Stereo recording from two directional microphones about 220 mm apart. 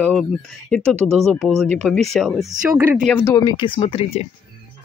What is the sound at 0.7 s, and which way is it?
Speech, 5° left (ahead or behind).